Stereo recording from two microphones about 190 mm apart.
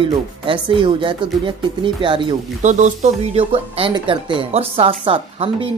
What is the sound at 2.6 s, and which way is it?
Speech, 40° right (ahead or behind).